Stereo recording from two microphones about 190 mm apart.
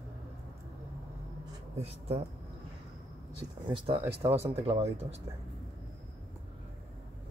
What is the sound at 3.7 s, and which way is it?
Speech, 30° right (ahead or behind).